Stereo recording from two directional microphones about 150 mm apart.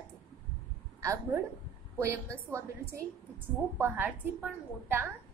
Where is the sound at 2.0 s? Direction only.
20° right (ahead or behind).